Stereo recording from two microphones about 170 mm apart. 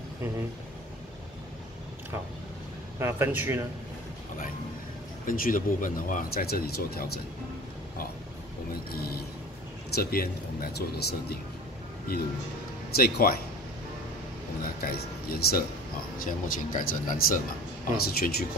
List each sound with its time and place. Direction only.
3.0 s speech: 15° right (ahead or behind)
5.2 s speech: 55° left (ahead or behind)
8.7 s speech: 60° left (ahead or behind)
14.6 s speech: 60° left (ahead or behind)
16.3 s speech: 50° left (ahead or behind)
17.9 s speech: 65° left (ahead or behind)